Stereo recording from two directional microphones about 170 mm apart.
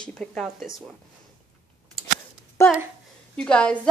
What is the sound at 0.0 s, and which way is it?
Speech, 5° left (ahead or behind).